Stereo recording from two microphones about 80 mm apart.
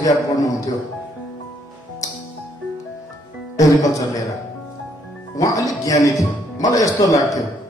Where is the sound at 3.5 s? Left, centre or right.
Left.